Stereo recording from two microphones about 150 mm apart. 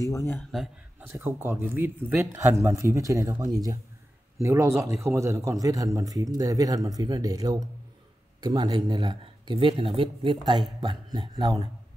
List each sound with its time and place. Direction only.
0.0 s speech: 20° left (ahead or behind)
0.4 s a man's voice: centre (ahead or behind)
1.0 s a man's voice: 15° right (ahead or behind)